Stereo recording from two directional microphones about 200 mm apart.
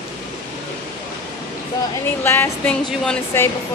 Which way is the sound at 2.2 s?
10° left (ahead or behind).